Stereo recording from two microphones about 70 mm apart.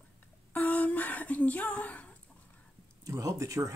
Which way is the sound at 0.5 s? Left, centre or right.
Left.